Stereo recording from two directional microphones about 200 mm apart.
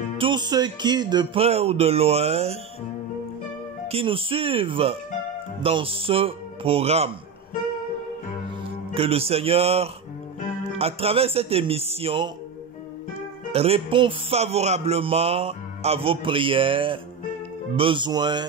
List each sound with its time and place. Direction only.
0.2 s a man's voice: 20° right (ahead or behind)
3.8 s a man's voice: 30° right (ahead or behind)
8.9 s a man's voice: 30° right (ahead or behind)
13.5 s a man's voice: 30° right (ahead or behind)